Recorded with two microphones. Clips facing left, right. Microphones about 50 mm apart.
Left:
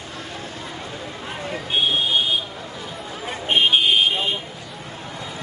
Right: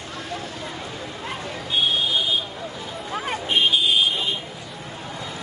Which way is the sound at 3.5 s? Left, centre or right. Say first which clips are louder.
Left 3 dB; left.